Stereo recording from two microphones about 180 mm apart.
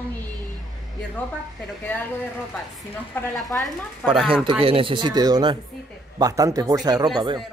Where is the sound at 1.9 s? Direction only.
10° left (ahead or behind).